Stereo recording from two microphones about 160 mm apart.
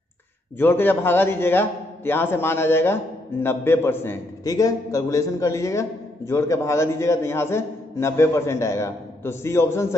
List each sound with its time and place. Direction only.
0.6 s a man's voice: 10° left (ahead or behind)